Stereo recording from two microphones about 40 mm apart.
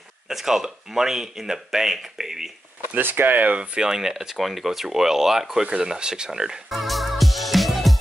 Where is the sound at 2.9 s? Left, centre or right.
Right.